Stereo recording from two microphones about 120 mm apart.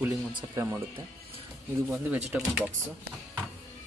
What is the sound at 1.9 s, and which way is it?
Speech, 10° right (ahead or behind).